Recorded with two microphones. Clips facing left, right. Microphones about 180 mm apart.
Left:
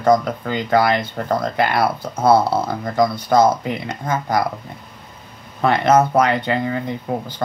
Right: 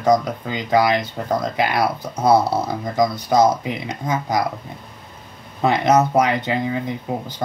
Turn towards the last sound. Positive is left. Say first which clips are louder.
# left 1 dB
turn(degrees=-15)  # may be behind; listen again after turning